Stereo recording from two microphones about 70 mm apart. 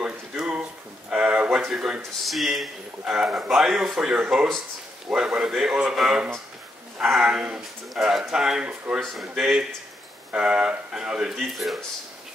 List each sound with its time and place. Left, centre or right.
0.0 s a sound: centre
1.7 s speech: centre
7.2 s speech: centre
9.0 s speech: centre